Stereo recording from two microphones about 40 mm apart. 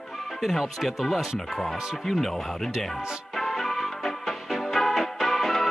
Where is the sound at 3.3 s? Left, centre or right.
Centre.